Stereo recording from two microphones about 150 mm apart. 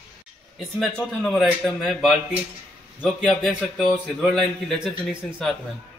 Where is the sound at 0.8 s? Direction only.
Centre (ahead or behind).